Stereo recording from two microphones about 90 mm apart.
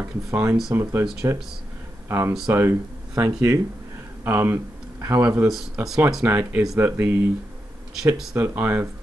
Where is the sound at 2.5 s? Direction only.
30° right (ahead or behind).